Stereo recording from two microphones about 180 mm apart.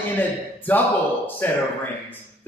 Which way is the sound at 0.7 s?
10° left (ahead or behind).